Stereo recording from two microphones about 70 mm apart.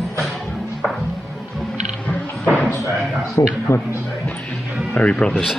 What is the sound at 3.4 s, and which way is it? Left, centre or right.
Speech, left.